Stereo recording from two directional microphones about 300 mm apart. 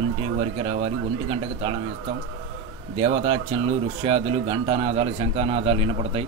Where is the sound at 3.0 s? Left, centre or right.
Centre.